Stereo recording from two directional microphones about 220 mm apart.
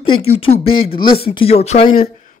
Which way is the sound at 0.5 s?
25° left (ahead or behind).